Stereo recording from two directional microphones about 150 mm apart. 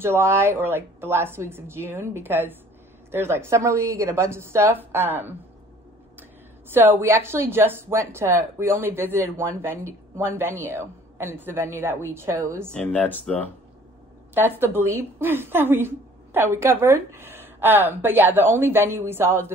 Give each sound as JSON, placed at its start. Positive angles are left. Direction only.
{"t": 0.0, "sound": "a woman's voice", "side_deg": -15}
{"t": 6.7, "sound": "a woman's voice", "side_deg": -15}
{"t": 12.7, "sound": "speech", "side_deg": 10}
{"t": 14.3, "sound": "a woman's voice", "side_deg": -15}